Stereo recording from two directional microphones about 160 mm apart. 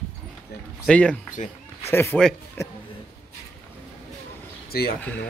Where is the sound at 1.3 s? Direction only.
50° left (ahead or behind).